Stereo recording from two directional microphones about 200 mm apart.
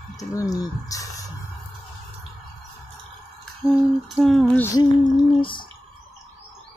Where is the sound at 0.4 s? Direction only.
15° left (ahead or behind).